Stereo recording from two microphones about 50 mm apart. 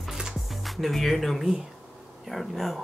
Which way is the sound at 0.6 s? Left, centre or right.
Centre.